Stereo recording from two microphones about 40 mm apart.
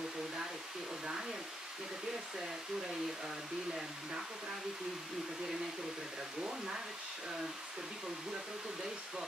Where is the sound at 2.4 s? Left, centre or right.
Centre.